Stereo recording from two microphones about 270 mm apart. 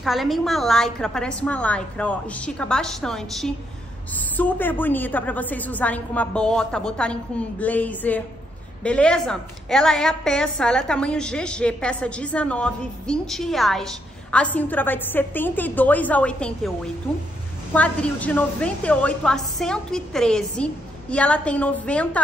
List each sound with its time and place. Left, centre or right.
0.0 s a woman's voice: centre